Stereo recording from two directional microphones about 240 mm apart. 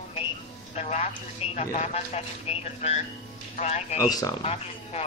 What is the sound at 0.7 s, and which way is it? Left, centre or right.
Speech, left.